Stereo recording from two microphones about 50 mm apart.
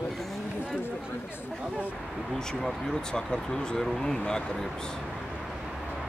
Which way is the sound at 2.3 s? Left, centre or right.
Centre.